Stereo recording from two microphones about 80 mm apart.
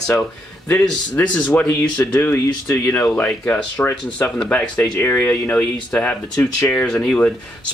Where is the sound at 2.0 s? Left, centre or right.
Left.